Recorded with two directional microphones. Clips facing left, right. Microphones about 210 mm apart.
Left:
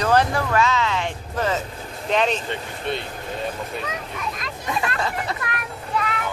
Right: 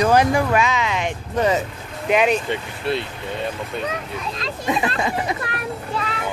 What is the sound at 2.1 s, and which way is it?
Speech, 10° right (ahead or behind).